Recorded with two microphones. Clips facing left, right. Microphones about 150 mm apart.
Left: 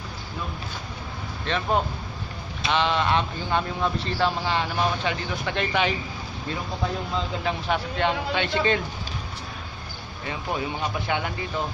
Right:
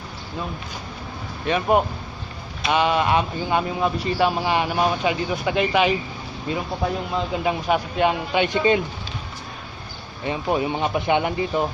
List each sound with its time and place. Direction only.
1.4 s a man's voice: 10° right (ahead or behind)
7.4 s a man's voice: 15° right (ahead or behind)
10.2 s speech: 20° right (ahead or behind)